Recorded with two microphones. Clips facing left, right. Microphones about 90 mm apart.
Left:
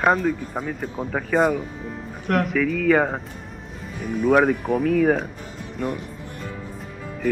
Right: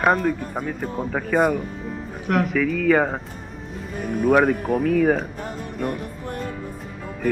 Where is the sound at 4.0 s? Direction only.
50° right (ahead or behind).